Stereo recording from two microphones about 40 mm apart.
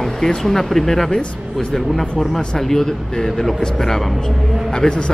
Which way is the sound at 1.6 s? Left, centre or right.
Left.